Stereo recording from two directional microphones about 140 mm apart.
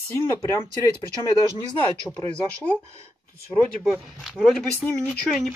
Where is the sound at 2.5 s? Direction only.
10° left (ahead or behind).